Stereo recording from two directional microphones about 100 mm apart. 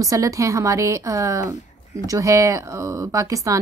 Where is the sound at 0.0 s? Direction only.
35° right (ahead or behind).